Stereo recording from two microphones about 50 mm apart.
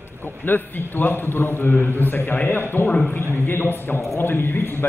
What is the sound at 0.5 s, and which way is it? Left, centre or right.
A man's voice, left.